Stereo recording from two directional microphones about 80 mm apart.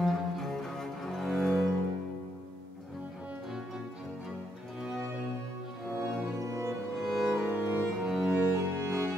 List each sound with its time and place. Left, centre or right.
0.0 s cello: centre
5.9 s music: centre
6.4 s music: right
7.0 s music: centre
7.3 s music: centre
8.1 s music: centre
8.4 s music: right